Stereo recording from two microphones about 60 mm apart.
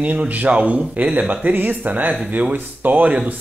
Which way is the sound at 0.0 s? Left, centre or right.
Right.